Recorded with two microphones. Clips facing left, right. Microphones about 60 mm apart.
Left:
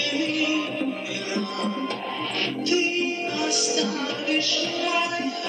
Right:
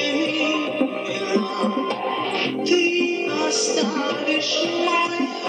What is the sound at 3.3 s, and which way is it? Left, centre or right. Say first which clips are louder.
Music: right 4 dB; right.